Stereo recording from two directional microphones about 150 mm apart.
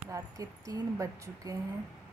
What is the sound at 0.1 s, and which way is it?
Speech, 20° right (ahead or behind).